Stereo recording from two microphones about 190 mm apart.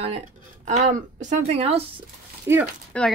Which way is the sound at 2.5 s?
15° right (ahead or behind).